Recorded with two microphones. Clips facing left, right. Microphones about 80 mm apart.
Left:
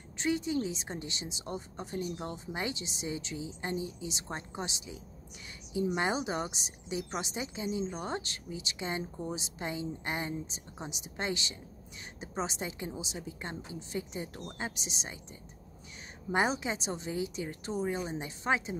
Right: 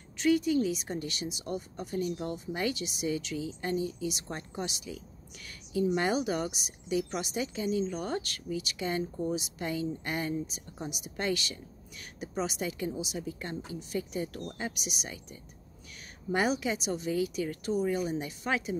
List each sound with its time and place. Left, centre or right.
0.2 s speech: left
16.3 s speech: left